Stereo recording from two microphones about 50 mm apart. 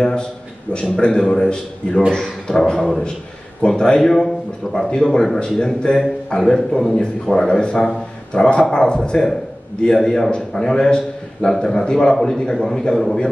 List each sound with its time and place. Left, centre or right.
0.9 s a man's voice: centre